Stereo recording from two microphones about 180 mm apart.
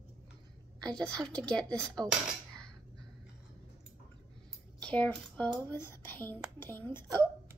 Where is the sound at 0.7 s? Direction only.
5° left (ahead or behind).